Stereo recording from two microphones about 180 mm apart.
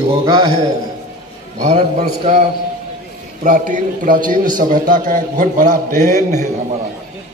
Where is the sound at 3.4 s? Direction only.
50° right (ahead or behind).